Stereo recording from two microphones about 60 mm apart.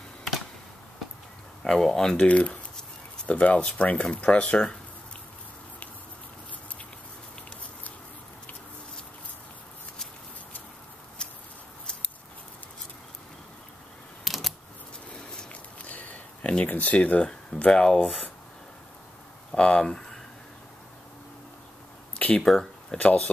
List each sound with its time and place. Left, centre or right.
1.6 s speech: centre
11.2 s a sound: centre
14.2 s camera: centre
15.9 s a sound: left
17.3 s speech: centre
19.5 s speech: centre
22.4 s speech: centre
22.9 s speech: left